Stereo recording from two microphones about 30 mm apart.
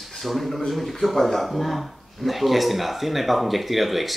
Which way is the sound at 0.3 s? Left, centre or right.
Centre.